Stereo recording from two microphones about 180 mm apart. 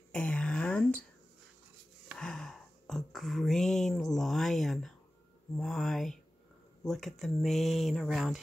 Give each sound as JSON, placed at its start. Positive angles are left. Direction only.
{"t": 0.1, "sound": "whispering", "side_deg": 5}
{"t": 2.1, "sound": "a sound", "side_deg": 5}
{"t": 6.8, "sound": "speech", "side_deg": 0}